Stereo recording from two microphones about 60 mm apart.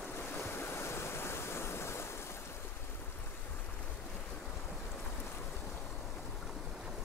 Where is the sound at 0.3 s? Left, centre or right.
Left.